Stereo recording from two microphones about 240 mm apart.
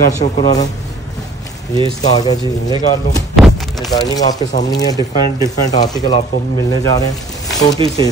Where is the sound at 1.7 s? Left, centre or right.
Centre.